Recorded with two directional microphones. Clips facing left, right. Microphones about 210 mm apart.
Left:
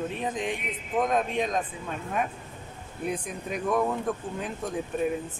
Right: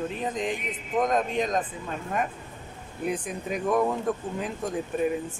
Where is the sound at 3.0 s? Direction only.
Centre (ahead or behind).